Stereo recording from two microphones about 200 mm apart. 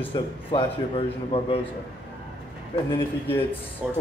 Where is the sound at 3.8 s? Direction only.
10° right (ahead or behind).